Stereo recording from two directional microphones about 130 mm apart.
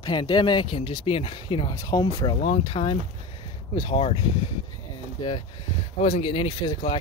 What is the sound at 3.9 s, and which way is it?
Speech, 45° left (ahead or behind).